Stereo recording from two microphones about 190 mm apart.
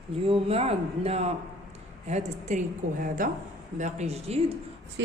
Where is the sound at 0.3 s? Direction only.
30° right (ahead or behind).